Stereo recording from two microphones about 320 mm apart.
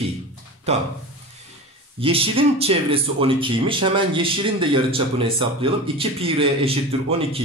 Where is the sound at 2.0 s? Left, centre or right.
Centre.